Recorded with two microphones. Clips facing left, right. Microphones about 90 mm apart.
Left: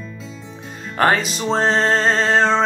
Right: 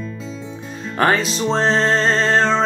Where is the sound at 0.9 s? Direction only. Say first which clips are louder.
Even; 5° left (ahead or behind).